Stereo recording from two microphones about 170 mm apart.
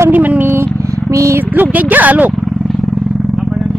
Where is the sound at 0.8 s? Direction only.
20° right (ahead or behind).